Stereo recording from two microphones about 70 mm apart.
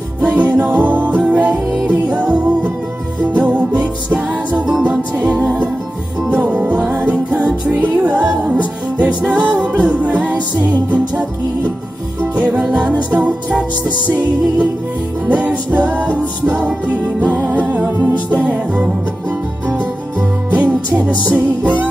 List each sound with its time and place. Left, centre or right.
0.3 s music: right
12.4 s music: centre
19.8 s music: centre